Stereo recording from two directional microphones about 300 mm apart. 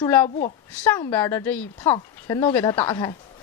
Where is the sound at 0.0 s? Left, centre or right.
Centre.